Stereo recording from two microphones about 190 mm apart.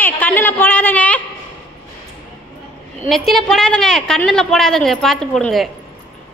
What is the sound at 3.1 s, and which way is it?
A woman's voice, centre (ahead or behind).